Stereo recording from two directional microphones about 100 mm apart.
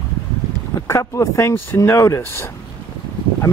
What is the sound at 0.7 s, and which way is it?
Speech, 30° left (ahead or behind).